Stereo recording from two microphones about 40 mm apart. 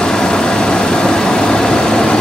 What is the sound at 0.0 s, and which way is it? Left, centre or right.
Vehicle, centre.